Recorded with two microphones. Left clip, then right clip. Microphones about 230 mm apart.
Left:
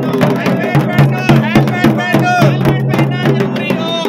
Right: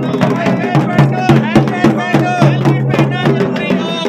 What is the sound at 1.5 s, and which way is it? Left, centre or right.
Music, left.